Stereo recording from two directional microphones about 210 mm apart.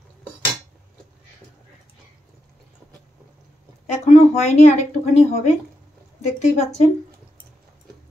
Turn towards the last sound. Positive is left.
turn(degrees=30)  # may be behind; listen again after turning